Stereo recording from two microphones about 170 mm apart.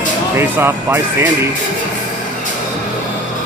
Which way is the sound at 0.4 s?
10° right (ahead or behind).